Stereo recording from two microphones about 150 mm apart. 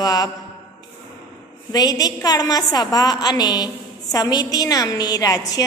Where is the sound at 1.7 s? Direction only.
25° left (ahead or behind).